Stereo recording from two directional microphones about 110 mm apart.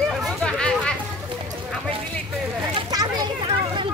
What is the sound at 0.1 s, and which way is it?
Hubbub, centre (ahead or behind).